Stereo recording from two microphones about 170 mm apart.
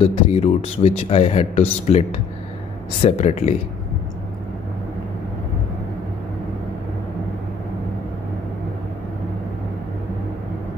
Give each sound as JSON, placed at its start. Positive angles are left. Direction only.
{"t": 0.0, "sound": "speech", "side_deg": 35}